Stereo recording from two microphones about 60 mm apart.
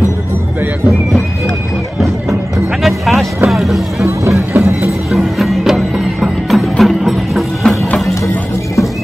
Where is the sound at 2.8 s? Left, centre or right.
Centre.